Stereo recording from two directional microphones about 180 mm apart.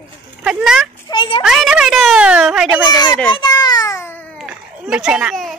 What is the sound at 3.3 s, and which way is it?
Baby cry, 25° left (ahead or behind).